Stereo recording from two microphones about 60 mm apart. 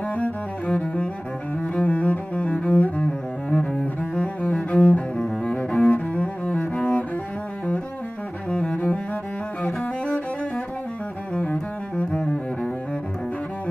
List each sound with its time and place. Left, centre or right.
0.7 s cello: centre
5.9 s cello: left
8.5 s cello: centre
9.6 s cello: centre
11.5 s double bass: centre